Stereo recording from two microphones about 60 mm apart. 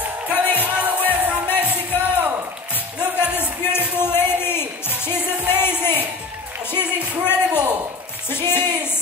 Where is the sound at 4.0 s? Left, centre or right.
Left.